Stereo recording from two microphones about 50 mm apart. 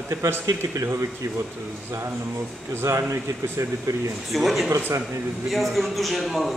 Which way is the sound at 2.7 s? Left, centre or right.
Right.